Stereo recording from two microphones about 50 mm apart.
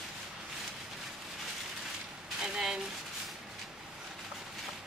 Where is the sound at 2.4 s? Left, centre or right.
Centre.